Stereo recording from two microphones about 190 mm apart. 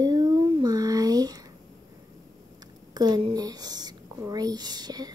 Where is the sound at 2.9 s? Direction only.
25° right (ahead or behind).